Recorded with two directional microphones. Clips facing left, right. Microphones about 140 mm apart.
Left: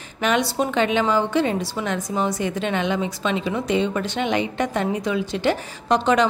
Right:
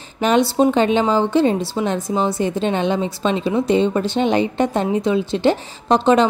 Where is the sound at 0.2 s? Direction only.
30° right (ahead or behind).